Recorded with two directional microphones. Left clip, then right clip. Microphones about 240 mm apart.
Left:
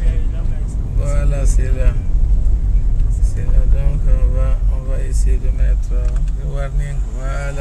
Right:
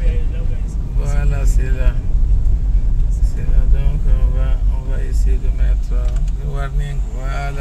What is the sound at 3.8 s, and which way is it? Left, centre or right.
Speech, centre.